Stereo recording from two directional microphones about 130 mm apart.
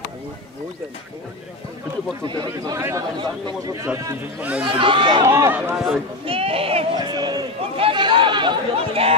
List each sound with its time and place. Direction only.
2.2 s speech: 30° right (ahead or behind)
3.8 s a man's voice: 20° right (ahead or behind)
4.6 s speech: 40° right (ahead or behind)
5.2 s speech: 20° right (ahead or behind)
6.2 s speech: 45° right (ahead or behind)
7.2 s a sound: 30° right (ahead or behind)
7.7 s chatter: 40° right (ahead or behind)